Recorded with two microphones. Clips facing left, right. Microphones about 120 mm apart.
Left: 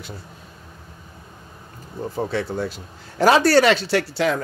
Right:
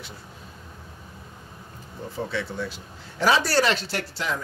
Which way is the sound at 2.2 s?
40° left (ahead or behind).